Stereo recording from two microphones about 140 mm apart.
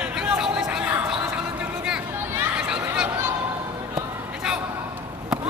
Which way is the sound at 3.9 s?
5° right (ahead or behind).